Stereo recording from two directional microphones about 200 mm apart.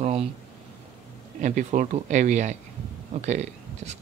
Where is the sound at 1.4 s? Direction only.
40° right (ahead or behind).